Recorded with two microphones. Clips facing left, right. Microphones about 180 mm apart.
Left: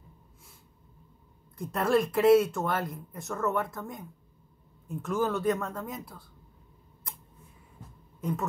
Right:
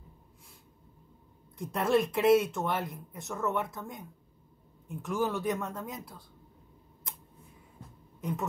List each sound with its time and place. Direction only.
1.6 s speech: centre (ahead or behind)
4.8 s speech: 15° right (ahead or behind)
5.6 s speech: centre (ahead or behind)
8.2 s speech: centre (ahead or behind)